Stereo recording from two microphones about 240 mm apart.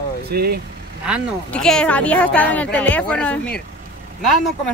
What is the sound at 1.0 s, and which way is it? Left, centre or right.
Speech, centre.